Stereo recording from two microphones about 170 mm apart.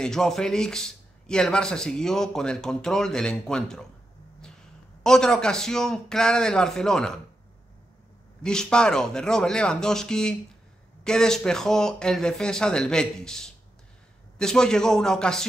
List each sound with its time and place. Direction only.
0.0 s speech: 5° left (ahead or behind)
5.0 s speech: 5° left (ahead or behind)
8.5 s speech: 5° left (ahead or behind)